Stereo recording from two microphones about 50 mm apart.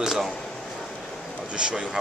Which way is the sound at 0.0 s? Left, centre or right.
Centre.